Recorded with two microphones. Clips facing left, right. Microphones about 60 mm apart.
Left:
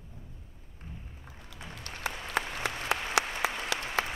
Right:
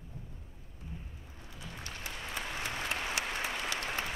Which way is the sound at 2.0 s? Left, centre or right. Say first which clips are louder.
Left 8 dB; left.